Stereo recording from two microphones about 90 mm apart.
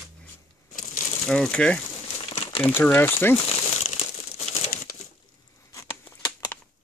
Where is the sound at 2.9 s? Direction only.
20° left (ahead or behind).